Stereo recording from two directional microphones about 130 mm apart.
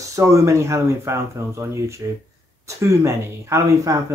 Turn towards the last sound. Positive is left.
turn(degrees=-25)  # may be behind; listen again after turning